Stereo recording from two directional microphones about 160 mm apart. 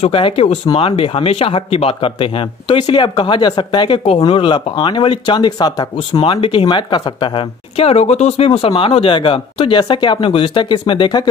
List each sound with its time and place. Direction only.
0.0 s speech: 35° left (ahead or behind)